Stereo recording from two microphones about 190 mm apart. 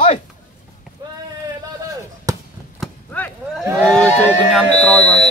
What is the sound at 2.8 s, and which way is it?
Chop, 5° left (ahead or behind).